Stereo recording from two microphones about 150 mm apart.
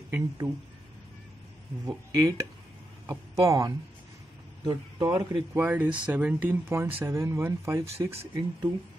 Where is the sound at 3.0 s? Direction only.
25° right (ahead or behind).